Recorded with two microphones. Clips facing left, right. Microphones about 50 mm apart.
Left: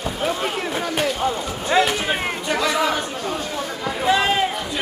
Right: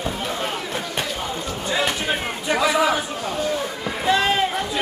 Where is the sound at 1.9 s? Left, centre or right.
Centre.